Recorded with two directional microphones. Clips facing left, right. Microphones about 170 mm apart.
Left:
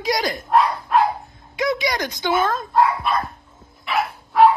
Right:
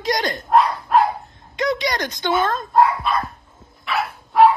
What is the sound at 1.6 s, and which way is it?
Speech, 10° left (ahead or behind).